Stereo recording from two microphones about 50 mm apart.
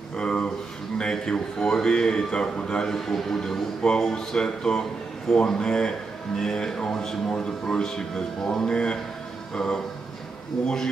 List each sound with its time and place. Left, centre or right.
0.2 s speech: centre